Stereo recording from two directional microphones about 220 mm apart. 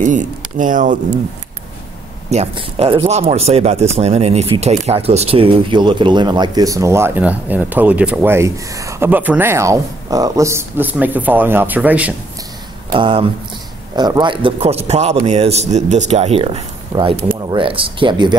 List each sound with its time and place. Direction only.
0.0 s speech: 35° right (ahead or behind)
2.2 s a man's voice: 30° right (ahead or behind); by 12.1 s 5° right (ahead or behind)
12.9 s a man's voice: 25° right (ahead or behind)